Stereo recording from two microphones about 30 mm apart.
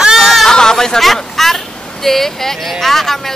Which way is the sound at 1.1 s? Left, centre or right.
Centre.